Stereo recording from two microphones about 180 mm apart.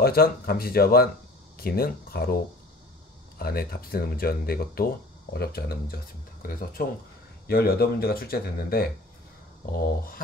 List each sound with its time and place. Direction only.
0.0 s speech: 55° left (ahead or behind)
9.8 s speech: 55° left (ahead or behind)